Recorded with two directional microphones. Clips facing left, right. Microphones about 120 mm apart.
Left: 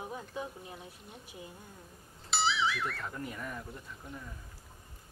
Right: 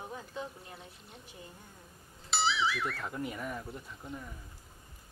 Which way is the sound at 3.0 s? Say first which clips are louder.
Right 3 dB; 10° right (ahead or behind).